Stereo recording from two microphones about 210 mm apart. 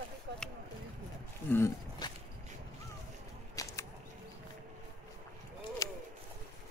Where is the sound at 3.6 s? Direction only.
15° left (ahead or behind).